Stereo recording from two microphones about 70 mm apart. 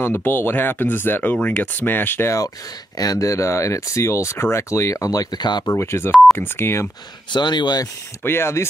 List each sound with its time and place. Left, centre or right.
0.0 s speech: left
3.0 s speech: left
5.8 s speech: left
7.3 s speech: left
8.2 s speech: left